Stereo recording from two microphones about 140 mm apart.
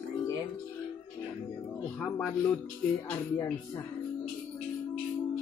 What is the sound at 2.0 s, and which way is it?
Speech, 10° left (ahead or behind).